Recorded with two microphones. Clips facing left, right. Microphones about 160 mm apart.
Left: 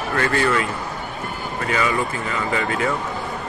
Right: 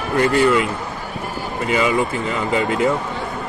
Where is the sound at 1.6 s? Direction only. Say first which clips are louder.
Right 4 dB; 20° right (ahead or behind).